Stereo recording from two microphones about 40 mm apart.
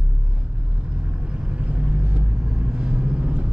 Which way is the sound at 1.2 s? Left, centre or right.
Right.